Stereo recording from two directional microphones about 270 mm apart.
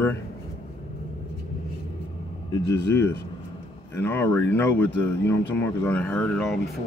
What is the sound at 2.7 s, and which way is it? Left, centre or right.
Speech, centre.